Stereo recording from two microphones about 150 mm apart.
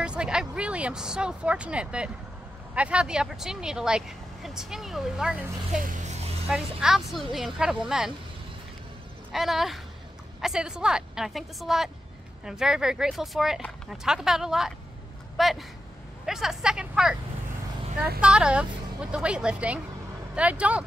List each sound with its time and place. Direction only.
0.0 s speech: 5° right (ahead or behind)
5.8 s a sound: 60° right (ahead or behind)
6.5 s speech: 5° right (ahead or behind)
9.3 s speech: centre (ahead or behind)
18.2 s a woman's voice: 5° right (ahead or behind)